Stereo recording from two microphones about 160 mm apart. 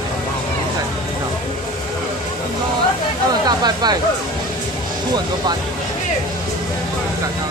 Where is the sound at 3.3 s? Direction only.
25° right (ahead or behind).